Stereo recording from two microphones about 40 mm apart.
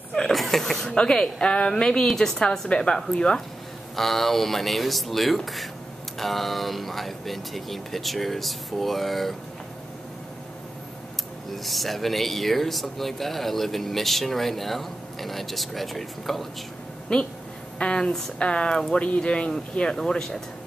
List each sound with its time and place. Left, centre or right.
0.3 s speech: centre
0.8 s a woman's voice: left
2.0 s a woman's voice: centre
3.9 s speech: centre
11.5 s speech: centre
17.1 s a woman's voice: left
20.1 s speech: centre